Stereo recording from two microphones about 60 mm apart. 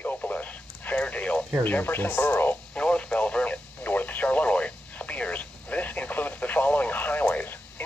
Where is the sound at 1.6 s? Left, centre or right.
Left.